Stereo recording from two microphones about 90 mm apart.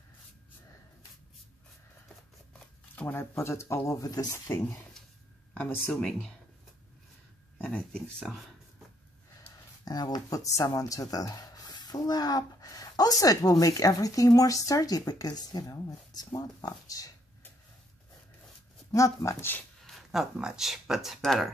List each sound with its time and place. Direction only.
3.0 s speech: 20° left (ahead or behind)
3.4 s speech: 30° left (ahead or behind)
5.5 s speech: 15° left (ahead or behind)
7.7 s speech: 10° left (ahead or behind)
9.8 s speech: 50° left (ahead or behind)
18.9 s speech: 35° left (ahead or behind)
19.8 s speech: centre (ahead or behind)